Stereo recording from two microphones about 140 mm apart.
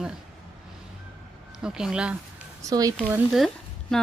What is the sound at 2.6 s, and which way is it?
Speech, 25° right (ahead or behind).